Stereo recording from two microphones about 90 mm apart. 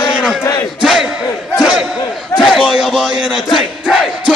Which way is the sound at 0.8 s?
5° right (ahead or behind).